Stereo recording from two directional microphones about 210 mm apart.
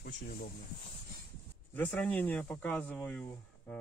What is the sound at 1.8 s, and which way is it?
Speech, 10° left (ahead or behind).